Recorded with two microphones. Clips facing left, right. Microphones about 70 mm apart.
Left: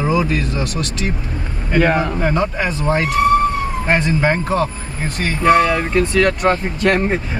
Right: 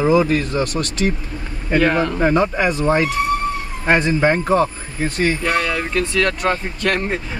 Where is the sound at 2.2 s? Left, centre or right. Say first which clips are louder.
Right 2 dB; centre.